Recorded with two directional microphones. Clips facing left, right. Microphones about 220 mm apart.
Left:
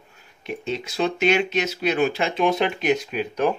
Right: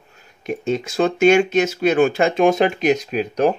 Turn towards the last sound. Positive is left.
turn(degrees=-40)  # may be behind; listen again after turning